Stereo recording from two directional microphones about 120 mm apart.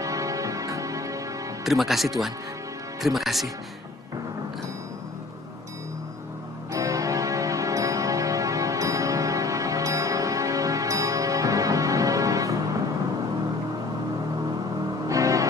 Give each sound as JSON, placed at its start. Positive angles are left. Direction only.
{"t": 0.0, "sound": "music", "side_deg": -25}
{"t": 1.6, "sound": "speech", "side_deg": 0}
{"t": 6.7, "sound": "music", "side_deg": -25}
{"t": 15.0, "sound": "music", "side_deg": -25}